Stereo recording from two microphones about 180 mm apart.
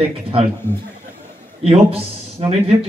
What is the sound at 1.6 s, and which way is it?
A man's voice, 35° right (ahead or behind).